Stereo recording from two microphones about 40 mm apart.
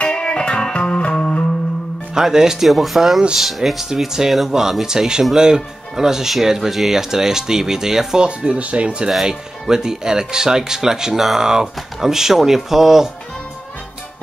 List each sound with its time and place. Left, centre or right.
0.0 s music: left
2.1 s speech: centre
2.7 s speech: centre
3.9 s speech: centre
8.2 s speech: right
9.2 s speech: centre